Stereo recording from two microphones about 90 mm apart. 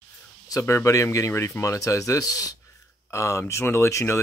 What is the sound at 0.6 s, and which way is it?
Speech, 35° left (ahead or behind).